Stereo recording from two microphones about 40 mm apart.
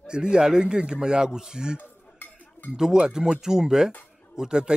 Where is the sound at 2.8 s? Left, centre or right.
Centre.